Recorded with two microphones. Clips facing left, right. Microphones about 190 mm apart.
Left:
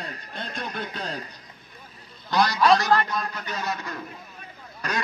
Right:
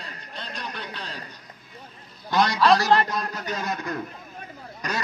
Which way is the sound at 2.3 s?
20° right (ahead or behind).